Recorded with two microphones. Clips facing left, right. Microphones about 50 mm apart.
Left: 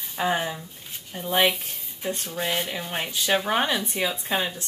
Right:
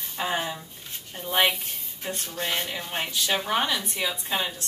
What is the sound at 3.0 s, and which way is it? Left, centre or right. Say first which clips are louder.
Speech: left 3 dB; left.